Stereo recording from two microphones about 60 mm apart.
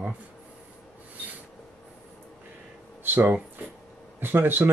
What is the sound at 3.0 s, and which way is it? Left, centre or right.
Speech, right.